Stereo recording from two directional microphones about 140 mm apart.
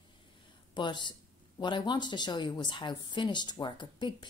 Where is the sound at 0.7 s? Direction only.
35° left (ahead or behind).